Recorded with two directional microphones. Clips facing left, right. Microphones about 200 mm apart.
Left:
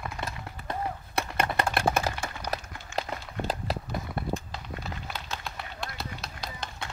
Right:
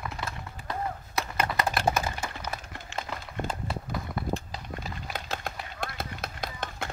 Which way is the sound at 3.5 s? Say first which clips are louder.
Left 2 dB; 90° left.